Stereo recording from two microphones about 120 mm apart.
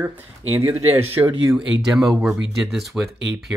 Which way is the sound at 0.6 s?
20° right (ahead or behind).